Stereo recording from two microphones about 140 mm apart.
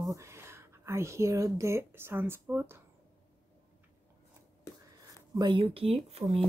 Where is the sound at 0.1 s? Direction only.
20° right (ahead or behind).